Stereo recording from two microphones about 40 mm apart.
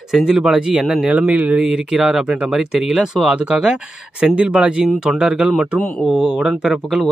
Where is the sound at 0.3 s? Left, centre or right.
Centre.